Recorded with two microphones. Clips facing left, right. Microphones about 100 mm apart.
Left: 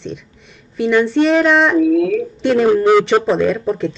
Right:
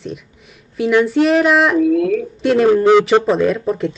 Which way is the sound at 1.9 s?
45° right (ahead or behind).